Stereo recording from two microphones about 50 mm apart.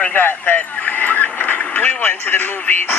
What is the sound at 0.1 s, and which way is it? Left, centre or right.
Speech, left.